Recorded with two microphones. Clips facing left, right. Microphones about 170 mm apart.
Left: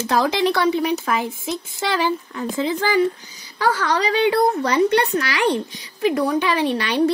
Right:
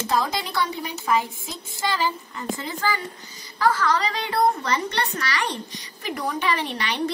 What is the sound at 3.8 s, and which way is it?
Speech, 70° left (ahead or behind).